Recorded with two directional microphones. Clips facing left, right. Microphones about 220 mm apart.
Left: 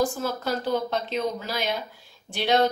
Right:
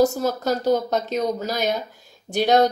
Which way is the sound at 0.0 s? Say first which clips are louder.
Right 6 dB; 40° right (ahead or behind).